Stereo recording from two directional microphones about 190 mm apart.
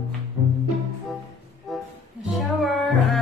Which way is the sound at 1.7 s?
Centre (ahead or behind).